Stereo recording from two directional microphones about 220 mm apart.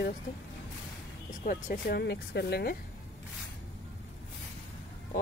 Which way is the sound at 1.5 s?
40° left (ahead or behind).